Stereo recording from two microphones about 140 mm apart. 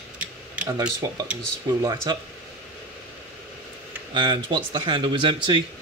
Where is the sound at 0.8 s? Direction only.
30° right (ahead or behind).